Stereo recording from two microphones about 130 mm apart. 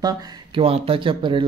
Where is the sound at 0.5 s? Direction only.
45° right (ahead or behind).